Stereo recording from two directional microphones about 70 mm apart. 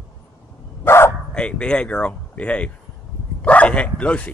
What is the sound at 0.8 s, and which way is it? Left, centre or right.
Bow-wow, left.